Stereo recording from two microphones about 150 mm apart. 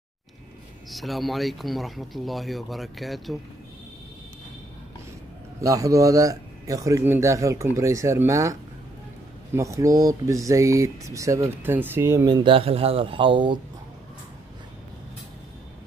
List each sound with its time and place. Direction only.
0.8 s speech: centre (ahead or behind)
5.6 s a man's voice: 20° right (ahead or behind)
12.3 s speech: 30° right (ahead or behind)